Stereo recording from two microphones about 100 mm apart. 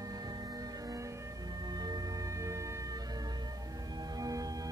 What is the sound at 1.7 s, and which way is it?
Music, 40° right (ahead or behind).